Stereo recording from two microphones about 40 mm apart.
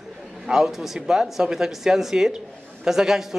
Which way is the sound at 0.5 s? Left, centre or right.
Centre.